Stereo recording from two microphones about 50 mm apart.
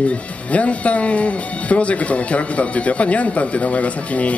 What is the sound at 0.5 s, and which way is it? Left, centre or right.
Speech, left.